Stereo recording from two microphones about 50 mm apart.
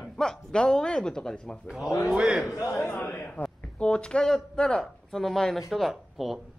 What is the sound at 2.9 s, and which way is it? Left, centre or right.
Speech, left.